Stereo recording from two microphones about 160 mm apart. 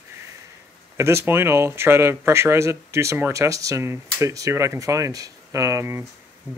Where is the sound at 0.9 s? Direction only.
15° right (ahead or behind).